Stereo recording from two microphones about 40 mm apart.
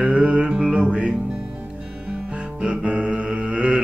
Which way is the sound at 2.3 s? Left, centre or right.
Right.